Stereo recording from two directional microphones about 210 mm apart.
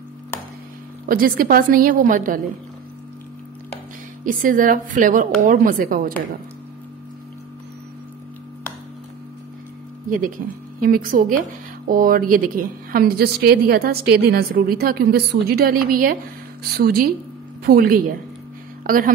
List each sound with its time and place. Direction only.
1.0 s a woman's voice: 45° right (ahead or behind)
4.2 s a woman's voice: 40° right (ahead or behind)
10.0 s a woman's voice: 40° right (ahead or behind)